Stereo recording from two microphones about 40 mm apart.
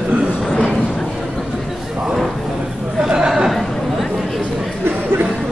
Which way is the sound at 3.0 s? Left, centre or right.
Centre.